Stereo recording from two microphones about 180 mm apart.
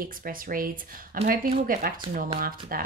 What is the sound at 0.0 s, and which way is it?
Speech, 50° right (ahead or behind).